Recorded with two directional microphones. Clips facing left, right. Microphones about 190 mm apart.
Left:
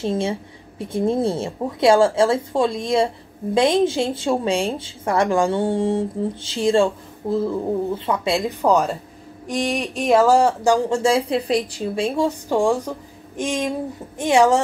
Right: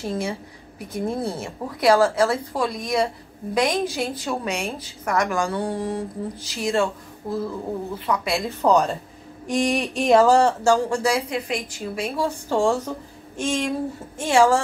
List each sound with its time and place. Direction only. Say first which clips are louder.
0.0 s a woman's voice: left 4 dB; 25° left (ahead or behind)
8.4 s a woman's voice: right 1 dB; 10° left (ahead or behind)